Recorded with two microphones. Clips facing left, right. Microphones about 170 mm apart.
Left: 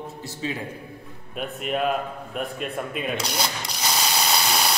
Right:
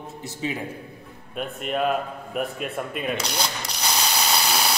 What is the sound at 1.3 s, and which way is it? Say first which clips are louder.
A man's voice: even; centre (ahead or behind).